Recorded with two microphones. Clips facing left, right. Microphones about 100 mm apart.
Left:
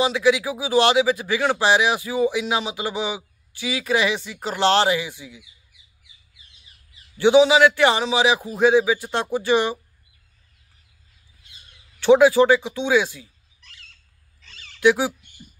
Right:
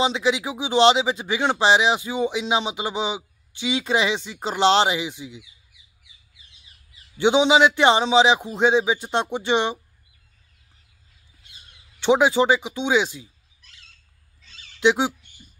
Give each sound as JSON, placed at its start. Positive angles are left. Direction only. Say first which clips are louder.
{"t": 0.0, "sound": "speech", "louder": "left 3 dB", "side_deg": -25}
{"t": 7.2, "sound": "speech", "louder": "left 2 dB", "side_deg": -20}
{"t": 12.0, "sound": "speech", "louder": "left 4 dB", "side_deg": -20}
{"t": 14.8, "sound": "speech", "louder": "left 2 dB", "side_deg": -20}